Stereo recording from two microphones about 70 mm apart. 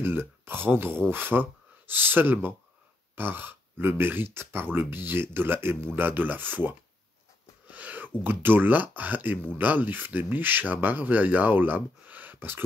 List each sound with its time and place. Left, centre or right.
0.0 s speech: right